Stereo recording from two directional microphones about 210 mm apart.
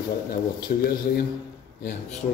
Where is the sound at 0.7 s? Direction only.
40° left (ahead or behind).